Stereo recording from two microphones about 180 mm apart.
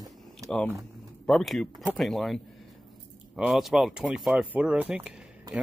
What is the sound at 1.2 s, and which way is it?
Speech, centre (ahead or behind).